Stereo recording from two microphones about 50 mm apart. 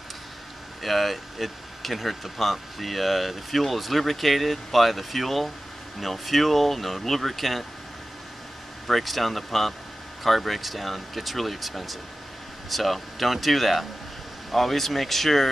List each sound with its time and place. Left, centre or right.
0.8 s speech: centre
8.8 s speech: centre